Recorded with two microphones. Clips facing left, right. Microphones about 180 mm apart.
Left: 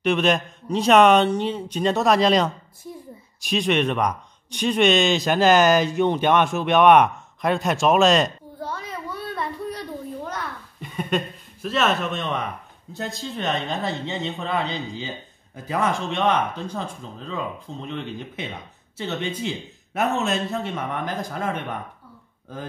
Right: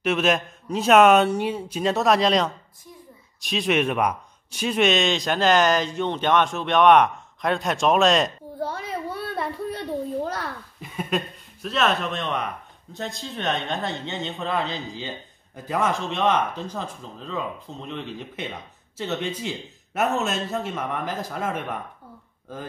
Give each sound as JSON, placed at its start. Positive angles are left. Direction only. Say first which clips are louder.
{"t": 0.0, "sound": "speech", "louder": "left 1 dB", "side_deg": 0}
{"t": 8.8, "sound": "a sound", "louder": "right 2 dB", "side_deg": -30}
{"t": 10.8, "sound": "speech", "louder": "left 2 dB", "side_deg": 0}